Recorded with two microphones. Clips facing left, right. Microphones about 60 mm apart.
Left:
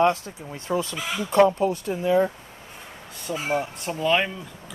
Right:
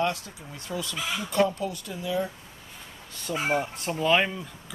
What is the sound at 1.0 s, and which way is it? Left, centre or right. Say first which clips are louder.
Speech: left 2 dB; centre.